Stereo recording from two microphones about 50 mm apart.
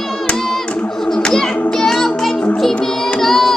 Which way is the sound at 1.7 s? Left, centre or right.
Centre.